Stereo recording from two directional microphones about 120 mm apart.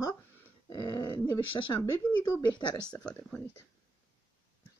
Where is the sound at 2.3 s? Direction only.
40° left (ahead or behind).